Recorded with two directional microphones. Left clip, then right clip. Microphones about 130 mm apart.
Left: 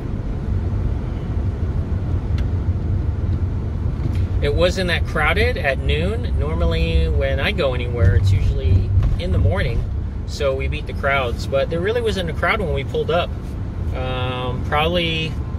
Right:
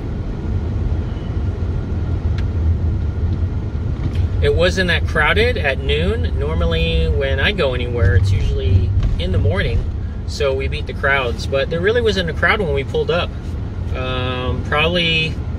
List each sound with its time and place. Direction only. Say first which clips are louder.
4.4 s speech: right 3 dB; 25° right (ahead or behind)
9.2 s speech: right 3 dB; 25° right (ahead or behind)